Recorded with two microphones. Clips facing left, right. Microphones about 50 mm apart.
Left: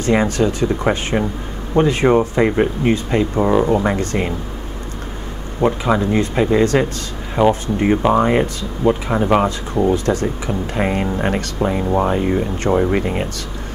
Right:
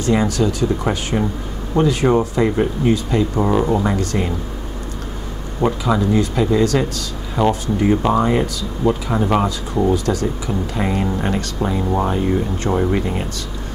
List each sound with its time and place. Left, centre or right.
0.0 s speech: left
3.3 s speech: centre
3.7 s speech: left
5.7 s speech: left
9.9 s speech: left
11.8 s speech: centre
12.3 s speech: left